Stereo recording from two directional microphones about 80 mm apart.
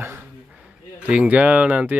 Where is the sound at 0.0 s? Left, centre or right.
Right.